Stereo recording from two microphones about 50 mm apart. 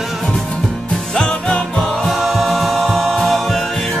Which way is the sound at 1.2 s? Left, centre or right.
Centre.